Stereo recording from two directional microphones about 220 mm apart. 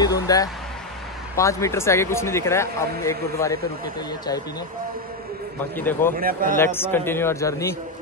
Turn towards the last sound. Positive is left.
turn(degrees=15)  # may be behind; listen again after turning